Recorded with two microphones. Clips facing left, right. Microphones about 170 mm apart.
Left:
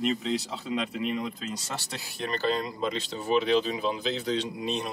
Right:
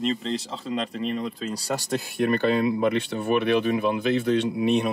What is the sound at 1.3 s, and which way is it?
Speech, 35° right (ahead or behind).